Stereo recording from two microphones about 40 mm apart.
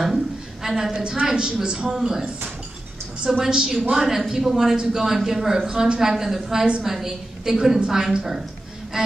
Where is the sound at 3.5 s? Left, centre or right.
Centre.